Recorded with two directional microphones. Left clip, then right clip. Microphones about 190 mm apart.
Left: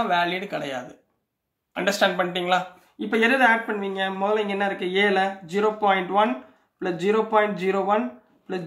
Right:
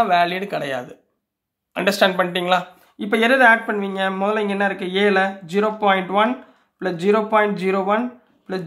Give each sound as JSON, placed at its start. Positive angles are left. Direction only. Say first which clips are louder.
{"t": 0.0, "sound": "speech", "louder": "right 6 dB", "side_deg": -30}